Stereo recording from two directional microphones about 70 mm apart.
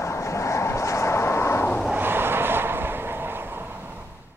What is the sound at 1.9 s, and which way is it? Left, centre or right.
Vehicle, right.